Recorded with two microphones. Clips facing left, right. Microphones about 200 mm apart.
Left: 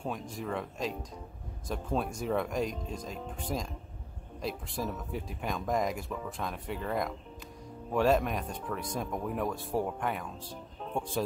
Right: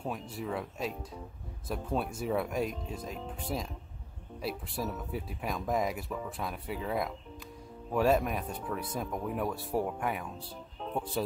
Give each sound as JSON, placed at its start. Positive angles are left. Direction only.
{"t": 0.0, "sound": "speech", "side_deg": -5}